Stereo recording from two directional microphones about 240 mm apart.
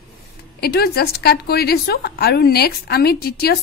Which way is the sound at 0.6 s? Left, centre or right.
Left.